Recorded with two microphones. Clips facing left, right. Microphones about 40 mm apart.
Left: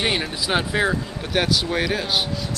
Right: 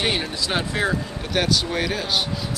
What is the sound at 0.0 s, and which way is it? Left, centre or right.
Speech, centre.